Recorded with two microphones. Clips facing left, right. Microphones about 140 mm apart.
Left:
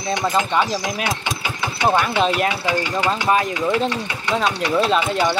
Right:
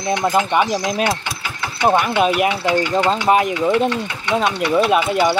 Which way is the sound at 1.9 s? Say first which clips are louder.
Right 3 dB; 10° right (ahead or behind).